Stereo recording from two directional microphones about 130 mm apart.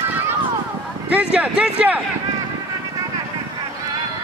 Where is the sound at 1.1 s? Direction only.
10° right (ahead or behind).